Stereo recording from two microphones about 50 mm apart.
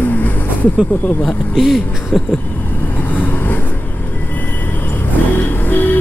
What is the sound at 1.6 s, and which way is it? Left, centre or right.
Speech, centre.